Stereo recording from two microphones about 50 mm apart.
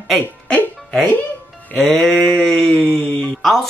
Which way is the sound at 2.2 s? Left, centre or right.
Left.